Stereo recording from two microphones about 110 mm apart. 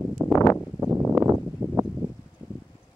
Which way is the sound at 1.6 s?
25° right (ahead or behind).